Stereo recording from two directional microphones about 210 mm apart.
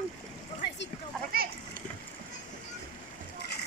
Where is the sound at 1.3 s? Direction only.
45° right (ahead or behind).